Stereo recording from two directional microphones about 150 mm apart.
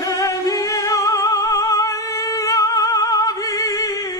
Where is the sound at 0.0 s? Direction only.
25° left (ahead or behind).